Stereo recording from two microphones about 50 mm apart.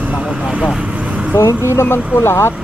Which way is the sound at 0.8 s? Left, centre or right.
Right.